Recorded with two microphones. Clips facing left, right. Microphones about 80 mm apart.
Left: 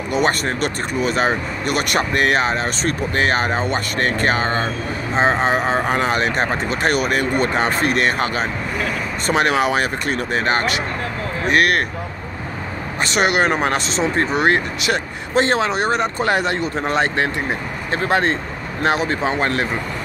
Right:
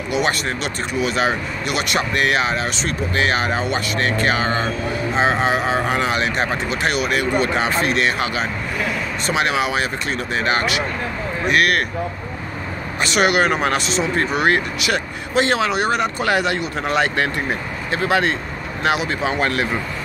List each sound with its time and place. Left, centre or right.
0.1 s speech: left
13.0 s speech: left